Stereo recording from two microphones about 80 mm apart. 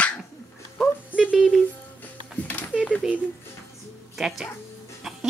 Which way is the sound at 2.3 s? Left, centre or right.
Centre.